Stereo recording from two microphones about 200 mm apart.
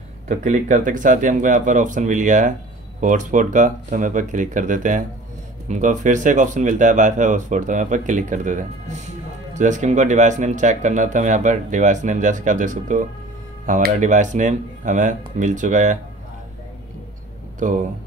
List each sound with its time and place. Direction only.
0.3 s speech: 40° right (ahead or behind)
17.6 s speech: 40° right (ahead or behind)